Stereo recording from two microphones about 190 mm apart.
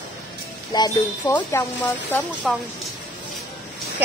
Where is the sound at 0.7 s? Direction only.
20° left (ahead or behind).